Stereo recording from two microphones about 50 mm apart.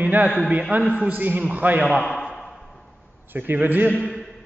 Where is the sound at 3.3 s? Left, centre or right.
Right.